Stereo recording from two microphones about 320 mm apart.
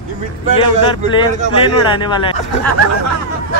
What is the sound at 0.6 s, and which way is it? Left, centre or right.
Speech, centre.